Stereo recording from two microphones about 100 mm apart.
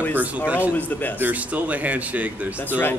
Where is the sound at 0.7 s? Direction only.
15° left (ahead or behind).